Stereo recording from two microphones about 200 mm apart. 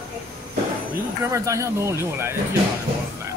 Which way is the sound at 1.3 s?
15° right (ahead or behind).